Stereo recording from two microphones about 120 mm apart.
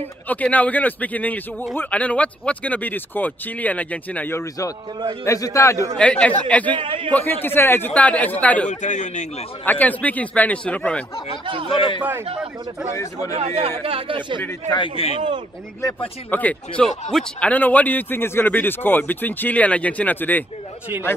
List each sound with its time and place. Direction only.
0.3 s a man's voice: 10° left (ahead or behind)
5.9 s speech: 10° left (ahead or behind)
6.7 s a man's voice: 45° right (ahead or behind)
7.1 s speech: 15° left (ahead or behind)
8.6 s a man's voice: 90° left
9.7 s speech: 15° left (ahead or behind)
11.2 s a man's voice: 45° right (ahead or behind)
12.9 s a man's voice: 25° left (ahead or behind)
13.4 s a man's voice: 55° right (ahead or behind)
14.7 s a man's voice: 45° left (ahead or behind)
16.3 s speech: 15° left (ahead or behind)